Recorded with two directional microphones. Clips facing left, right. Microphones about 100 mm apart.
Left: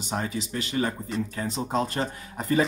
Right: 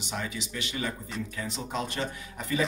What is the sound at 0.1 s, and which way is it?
Speech, 40° left (ahead or behind).